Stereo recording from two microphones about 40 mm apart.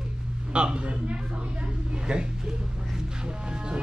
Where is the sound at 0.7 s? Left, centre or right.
Right.